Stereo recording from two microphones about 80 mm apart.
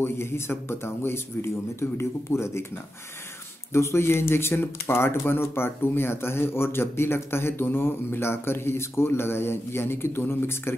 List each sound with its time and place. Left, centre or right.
0.0 s speech: left
3.7 s speech: left